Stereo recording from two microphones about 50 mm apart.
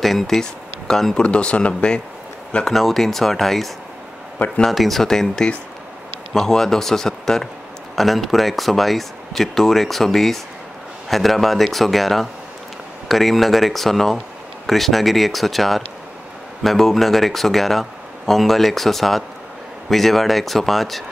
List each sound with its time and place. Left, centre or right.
0.0 s speech: centre
1.2 s speech: left
2.6 s a man's voice: centre